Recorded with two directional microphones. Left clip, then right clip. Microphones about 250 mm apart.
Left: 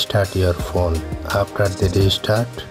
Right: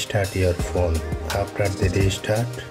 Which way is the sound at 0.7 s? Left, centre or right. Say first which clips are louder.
Left 3 dB; centre.